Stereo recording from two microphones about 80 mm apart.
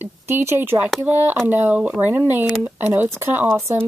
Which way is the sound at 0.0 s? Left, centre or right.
Right.